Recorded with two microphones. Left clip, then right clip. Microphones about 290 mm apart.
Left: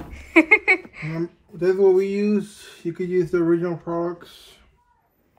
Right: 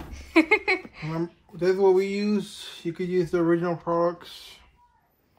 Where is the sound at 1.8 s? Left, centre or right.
Right.